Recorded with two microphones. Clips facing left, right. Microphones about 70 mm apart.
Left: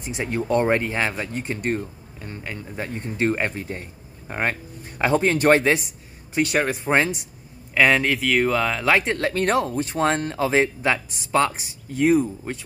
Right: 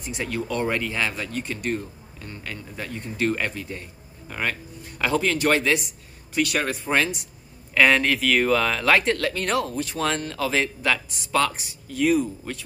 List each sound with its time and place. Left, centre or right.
0.0 s speech: left
6.6 s speech: centre
6.9 s speech: left
7.7 s speech: centre
9.3 s speech: left